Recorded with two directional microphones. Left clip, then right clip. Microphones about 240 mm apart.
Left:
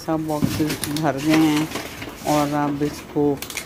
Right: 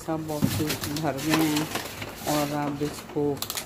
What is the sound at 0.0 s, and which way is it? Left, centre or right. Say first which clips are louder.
Speech: left 6 dB; centre.